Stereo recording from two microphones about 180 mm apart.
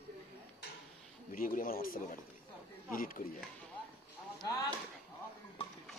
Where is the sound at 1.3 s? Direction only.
50° left (ahead or behind).